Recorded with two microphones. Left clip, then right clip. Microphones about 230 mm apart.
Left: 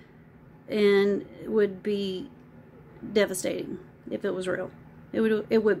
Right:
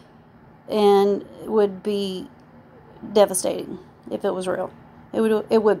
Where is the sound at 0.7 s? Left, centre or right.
Centre.